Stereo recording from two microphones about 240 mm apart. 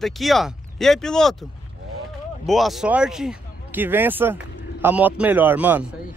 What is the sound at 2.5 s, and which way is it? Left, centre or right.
Speech, centre.